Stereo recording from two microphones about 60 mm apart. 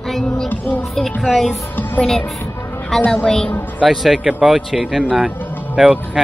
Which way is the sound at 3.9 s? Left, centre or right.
Centre.